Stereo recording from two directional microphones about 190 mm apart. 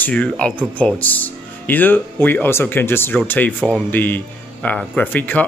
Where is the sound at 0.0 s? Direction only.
5° left (ahead or behind).